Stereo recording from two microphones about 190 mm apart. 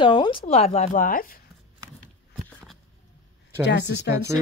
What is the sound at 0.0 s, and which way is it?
A woman's voice, 25° left (ahead or behind).